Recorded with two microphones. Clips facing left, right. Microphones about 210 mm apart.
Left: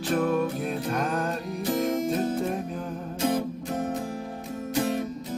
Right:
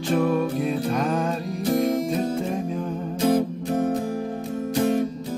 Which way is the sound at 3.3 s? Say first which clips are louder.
Right 6 dB; 55° right (ahead or behind).